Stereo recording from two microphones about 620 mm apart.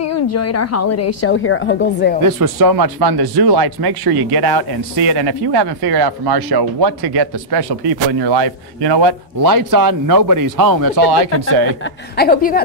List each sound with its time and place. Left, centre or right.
0.0 s a woman's voice: left
2.2 s speech: right
12.2 s a woman's voice: centre